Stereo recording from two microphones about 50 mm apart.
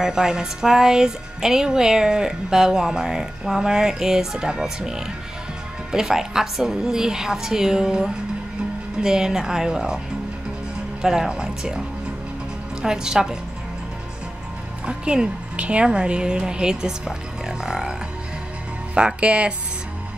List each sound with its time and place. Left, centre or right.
0.0 s a woman's voice: centre
11.0 s a woman's voice: centre
12.8 s a woman's voice: centre
14.9 s a woman's voice: centre
18.9 s a woman's voice: right